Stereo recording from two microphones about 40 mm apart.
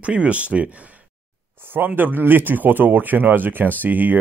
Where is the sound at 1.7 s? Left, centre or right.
Right.